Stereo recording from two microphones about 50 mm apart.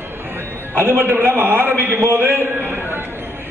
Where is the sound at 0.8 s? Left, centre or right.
Right.